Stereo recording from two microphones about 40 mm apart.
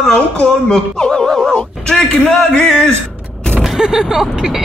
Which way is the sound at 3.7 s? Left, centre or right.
Centre.